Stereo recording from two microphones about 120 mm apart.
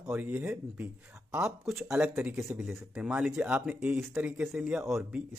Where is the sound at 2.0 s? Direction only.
10° right (ahead or behind).